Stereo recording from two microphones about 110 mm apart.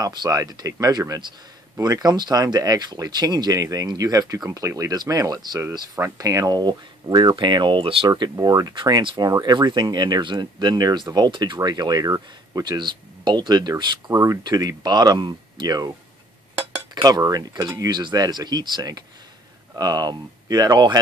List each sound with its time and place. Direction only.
0.0 s speech: 35° right (ahead or behind); by 8.1 s 55° right (ahead or behind)
8.1 s speech: 35° right (ahead or behind)
14.1 s speech: 25° right (ahead or behind)
16.9 s speech: 35° right (ahead or behind)